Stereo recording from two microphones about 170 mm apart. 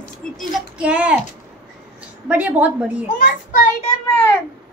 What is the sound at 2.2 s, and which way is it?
Speech, 10° right (ahead or behind).